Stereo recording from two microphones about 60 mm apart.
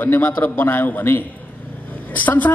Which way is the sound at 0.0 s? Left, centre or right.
Left.